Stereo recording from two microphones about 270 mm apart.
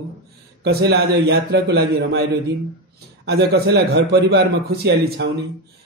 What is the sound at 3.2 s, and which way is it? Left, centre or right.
A man's voice, right.